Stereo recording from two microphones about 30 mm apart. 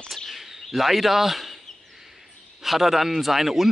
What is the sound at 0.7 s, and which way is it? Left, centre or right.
Speech, centre.